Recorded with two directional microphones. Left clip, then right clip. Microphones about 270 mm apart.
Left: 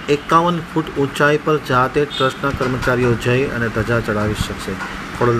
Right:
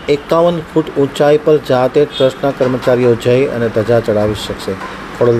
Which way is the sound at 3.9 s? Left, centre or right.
Centre.